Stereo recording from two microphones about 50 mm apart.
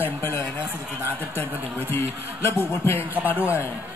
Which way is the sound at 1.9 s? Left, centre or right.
Left.